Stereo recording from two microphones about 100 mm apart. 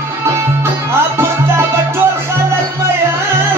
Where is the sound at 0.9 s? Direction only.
25° right (ahead or behind).